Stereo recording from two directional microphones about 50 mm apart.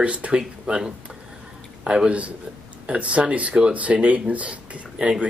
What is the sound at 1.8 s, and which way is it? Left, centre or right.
A man's voice, right.